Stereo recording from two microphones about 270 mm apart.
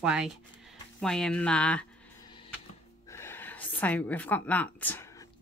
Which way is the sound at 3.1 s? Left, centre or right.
Centre.